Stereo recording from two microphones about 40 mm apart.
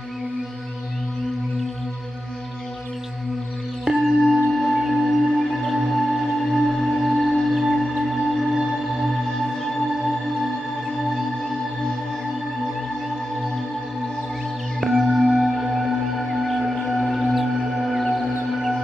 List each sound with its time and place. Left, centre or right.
3.8 s singing bowl: centre
4.9 s music: centre
14.8 s music: centre